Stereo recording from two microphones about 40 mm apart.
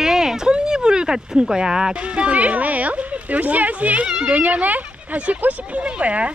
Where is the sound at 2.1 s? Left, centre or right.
Right.